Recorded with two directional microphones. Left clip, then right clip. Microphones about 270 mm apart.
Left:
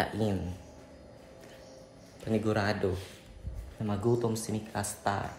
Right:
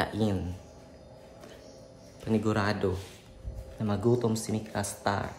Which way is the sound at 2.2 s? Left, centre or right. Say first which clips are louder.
Right 1 dB; centre.